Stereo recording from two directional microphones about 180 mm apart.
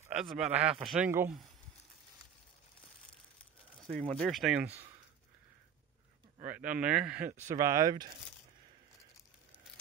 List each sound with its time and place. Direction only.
0.1 s a man's voice: centre (ahead or behind)
4.1 s a man's voice: centre (ahead or behind)
4.6 s speech: 35° right (ahead or behind)
6.4 s speech: 10° right (ahead or behind)
7.4 s speech: 20° right (ahead or behind)